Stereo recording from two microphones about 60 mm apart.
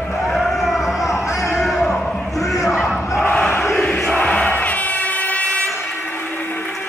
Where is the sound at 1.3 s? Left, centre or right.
Left.